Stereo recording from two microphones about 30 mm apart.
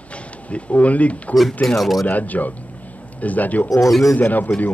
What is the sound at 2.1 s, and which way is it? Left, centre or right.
Speech, left.